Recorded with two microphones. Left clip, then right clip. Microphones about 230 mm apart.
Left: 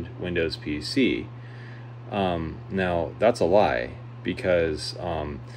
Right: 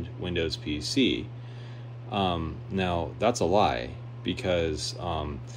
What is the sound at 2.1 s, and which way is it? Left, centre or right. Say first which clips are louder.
Speech: left 2 dB; centre.